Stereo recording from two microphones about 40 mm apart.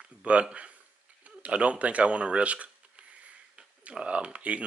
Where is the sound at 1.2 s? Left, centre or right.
Right.